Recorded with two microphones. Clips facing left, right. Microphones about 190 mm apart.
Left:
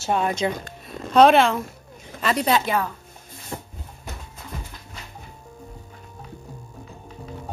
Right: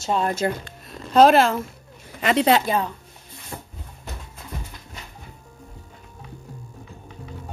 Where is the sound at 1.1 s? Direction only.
Centre (ahead or behind).